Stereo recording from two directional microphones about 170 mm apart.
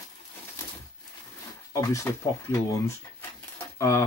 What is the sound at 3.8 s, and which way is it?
Speech, 15° left (ahead or behind).